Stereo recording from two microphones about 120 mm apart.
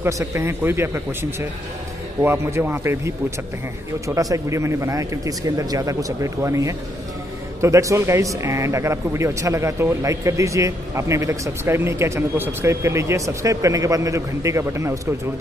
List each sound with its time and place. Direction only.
0.0 s speech: 20° right (ahead or behind)
2.2 s speech: 20° right (ahead or behind)